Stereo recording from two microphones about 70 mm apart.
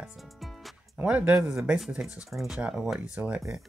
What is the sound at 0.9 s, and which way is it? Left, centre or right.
Speech, centre.